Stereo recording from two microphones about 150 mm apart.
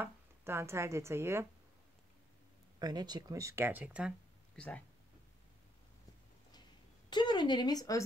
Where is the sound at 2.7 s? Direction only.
25° right (ahead or behind); by 4.1 s 10° right (ahead or behind).